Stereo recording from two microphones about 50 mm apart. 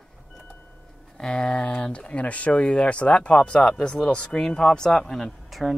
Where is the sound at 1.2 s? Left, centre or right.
Centre.